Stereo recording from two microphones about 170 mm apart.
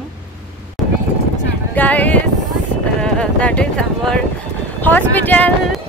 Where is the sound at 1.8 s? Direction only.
10° left (ahead or behind).